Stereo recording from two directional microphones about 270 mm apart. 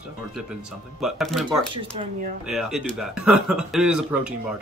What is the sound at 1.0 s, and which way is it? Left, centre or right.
Speech, centre.